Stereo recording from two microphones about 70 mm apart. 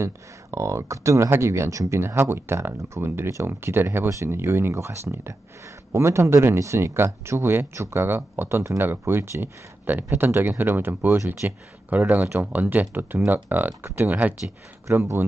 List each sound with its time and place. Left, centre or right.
0.0 s speech: right
2.0 s speech: right
14.9 s speech: right